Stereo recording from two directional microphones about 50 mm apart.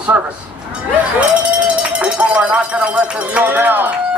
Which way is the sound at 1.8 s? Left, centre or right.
Right.